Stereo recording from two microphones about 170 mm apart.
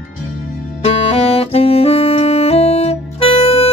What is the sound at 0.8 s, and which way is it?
Saxophone, 35° left (ahead or behind).